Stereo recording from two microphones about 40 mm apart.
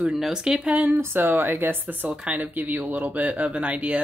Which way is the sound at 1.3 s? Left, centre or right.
Right.